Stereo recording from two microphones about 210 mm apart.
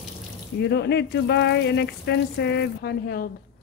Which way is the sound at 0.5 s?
55° left (ahead or behind).